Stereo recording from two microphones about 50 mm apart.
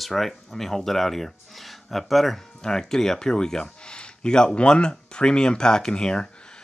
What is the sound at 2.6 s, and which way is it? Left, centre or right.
Speech, centre.